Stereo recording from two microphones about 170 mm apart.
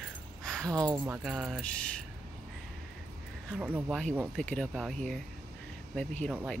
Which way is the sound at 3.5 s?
5° right (ahead or behind).